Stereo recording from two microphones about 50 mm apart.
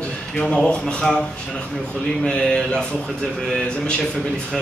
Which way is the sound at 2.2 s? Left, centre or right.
Centre.